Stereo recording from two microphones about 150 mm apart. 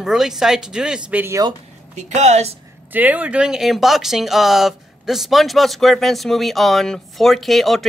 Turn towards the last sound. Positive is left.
turn(degrees=0)  # may be behind; listen again after turning